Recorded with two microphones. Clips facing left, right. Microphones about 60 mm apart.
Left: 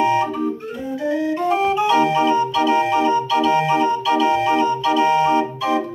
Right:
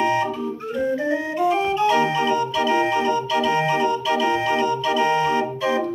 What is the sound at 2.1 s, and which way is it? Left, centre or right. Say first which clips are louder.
Organ: left 4 dB; left.